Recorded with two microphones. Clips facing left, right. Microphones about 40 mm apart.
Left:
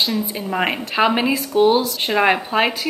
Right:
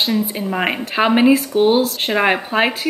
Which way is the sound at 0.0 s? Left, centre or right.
Centre.